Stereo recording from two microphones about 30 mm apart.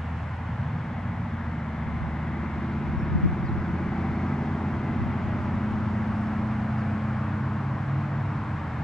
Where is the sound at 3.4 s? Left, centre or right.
Centre.